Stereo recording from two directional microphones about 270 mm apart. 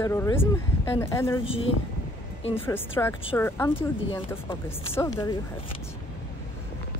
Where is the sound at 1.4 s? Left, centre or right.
Centre.